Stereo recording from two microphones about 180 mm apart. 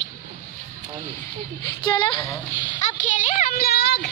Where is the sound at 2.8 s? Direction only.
45° left (ahead or behind); by 4.0 s 65° left (ahead or behind).